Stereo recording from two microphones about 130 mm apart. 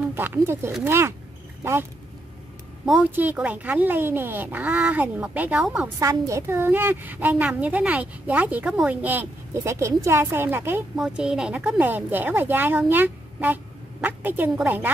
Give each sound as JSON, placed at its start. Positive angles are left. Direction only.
{"t": 0.1, "sound": "speech", "side_deg": -15}
{"t": 2.8, "sound": "a woman's voice", "side_deg": -5}
{"t": 5.9, "sound": "a woman's voice", "side_deg": -25}
{"t": 11.0, "sound": "a woman's voice", "side_deg": -5}